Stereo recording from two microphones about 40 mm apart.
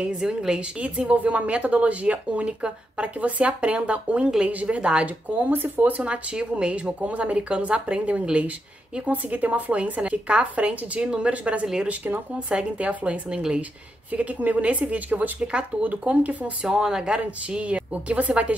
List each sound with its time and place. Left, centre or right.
0.6 s a woman's voice: right
4.7 s a woman's voice: right
5.5 s speech: right
6.0 s a woman's voice: right
11.6 s a woman's voice: centre
11.9 s speech: right
12.7 s a woman's voice: right
16.6 s a woman's voice: centre; by 18.6 s right